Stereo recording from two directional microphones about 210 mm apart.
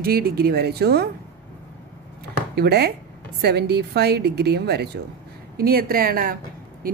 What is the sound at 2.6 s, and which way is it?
Speech, 50° right (ahead or behind).